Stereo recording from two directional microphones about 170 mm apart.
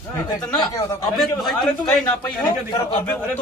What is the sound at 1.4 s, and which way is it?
A man's voice, centre (ahead or behind).